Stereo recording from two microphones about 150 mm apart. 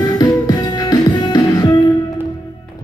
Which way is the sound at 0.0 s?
25° left (ahead or behind).